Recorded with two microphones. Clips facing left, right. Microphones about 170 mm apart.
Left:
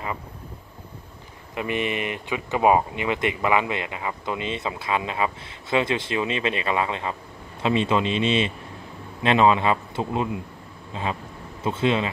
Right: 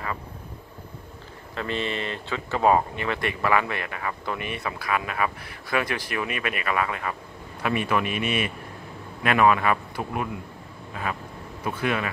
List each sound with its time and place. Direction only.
1.5 s speech: 15° left (ahead or behind)